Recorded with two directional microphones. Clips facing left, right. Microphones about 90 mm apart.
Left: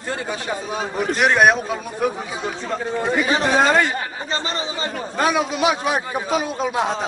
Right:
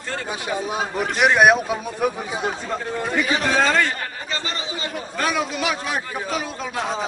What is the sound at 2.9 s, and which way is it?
A man's voice, 25° left (ahead or behind).